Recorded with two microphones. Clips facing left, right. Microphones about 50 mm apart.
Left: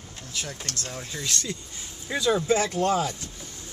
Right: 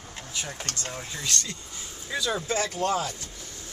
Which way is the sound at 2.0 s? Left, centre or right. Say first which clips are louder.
Left 5 dB; left.